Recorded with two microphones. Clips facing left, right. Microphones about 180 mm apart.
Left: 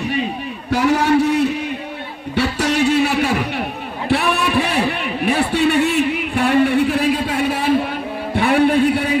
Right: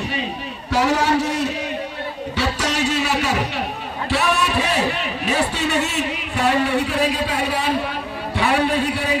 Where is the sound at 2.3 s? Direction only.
60° left (ahead or behind).